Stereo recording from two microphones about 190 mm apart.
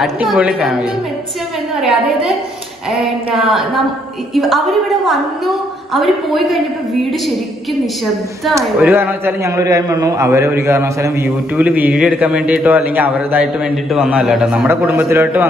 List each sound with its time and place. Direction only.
0.0 s a woman's voice: 5° right (ahead or behind)
8.5 s a man's voice: 10° right (ahead or behind)